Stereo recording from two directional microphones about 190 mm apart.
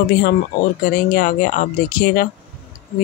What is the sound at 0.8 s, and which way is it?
Speech, 45° left (ahead or behind).